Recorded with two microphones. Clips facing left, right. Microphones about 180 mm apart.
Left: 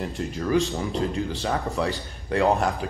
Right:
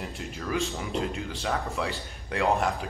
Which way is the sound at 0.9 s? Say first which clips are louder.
Left 3 dB; 35° left (ahead or behind).